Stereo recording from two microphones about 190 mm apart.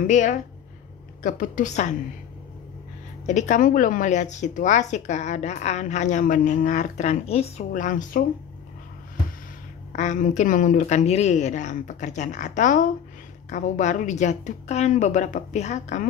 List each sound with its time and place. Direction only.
0.0 s speech: 40° left (ahead or behind)
3.3 s speech: 40° left (ahead or behind)
9.9 s speech: 40° left (ahead or behind)